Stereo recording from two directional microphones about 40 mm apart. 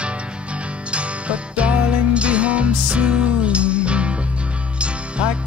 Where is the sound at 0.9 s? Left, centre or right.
Right.